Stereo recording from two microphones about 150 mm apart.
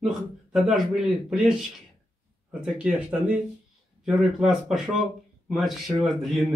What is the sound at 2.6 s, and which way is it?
Speech, 5° right (ahead or behind).